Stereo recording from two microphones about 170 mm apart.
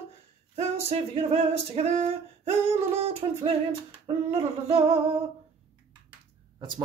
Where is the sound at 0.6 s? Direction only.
40° right (ahead or behind).